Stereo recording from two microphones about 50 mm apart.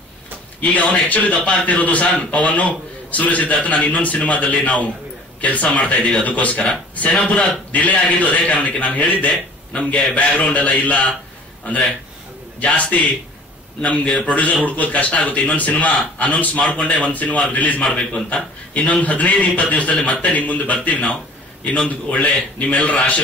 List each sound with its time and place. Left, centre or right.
0.6 s a man's voice: left
12.5 s a man's voice: left